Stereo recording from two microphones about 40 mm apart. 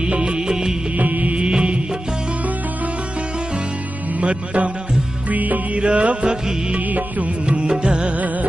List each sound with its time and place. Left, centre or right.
0.0 s music: right
0.9 s music: right
1.3 s music: right
4.2 s music: right
5.3 s music: right
5.8 s music: right
7.4 s music: right